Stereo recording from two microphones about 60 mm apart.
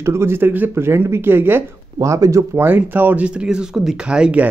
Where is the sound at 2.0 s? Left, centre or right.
Right.